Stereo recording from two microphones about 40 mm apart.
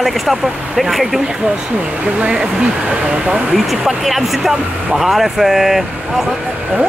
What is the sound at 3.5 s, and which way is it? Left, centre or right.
Speech, centre.